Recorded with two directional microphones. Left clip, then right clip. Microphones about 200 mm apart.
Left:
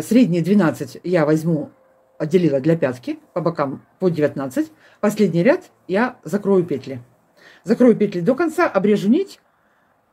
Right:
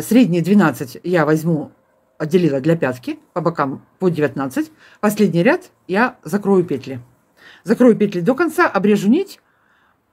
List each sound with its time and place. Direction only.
0.0 s speech: 15° right (ahead or behind)